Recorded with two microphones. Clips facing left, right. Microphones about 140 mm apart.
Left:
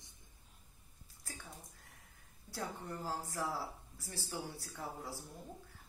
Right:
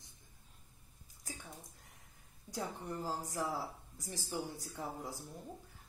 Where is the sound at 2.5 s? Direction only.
20° right (ahead or behind).